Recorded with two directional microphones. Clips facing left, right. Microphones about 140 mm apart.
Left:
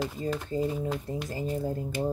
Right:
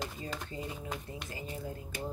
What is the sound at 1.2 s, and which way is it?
Speech, 40° left (ahead or behind).